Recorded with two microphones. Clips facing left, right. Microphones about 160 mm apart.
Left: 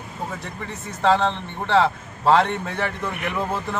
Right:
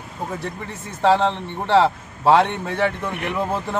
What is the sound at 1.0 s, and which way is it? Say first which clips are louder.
A man's voice: right 2 dB; 10° right (ahead or behind).